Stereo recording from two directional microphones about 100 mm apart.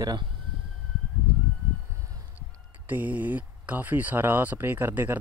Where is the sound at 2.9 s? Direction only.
15° right (ahead or behind).